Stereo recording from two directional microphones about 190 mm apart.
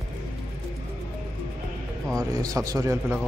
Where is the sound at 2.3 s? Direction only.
20° right (ahead or behind).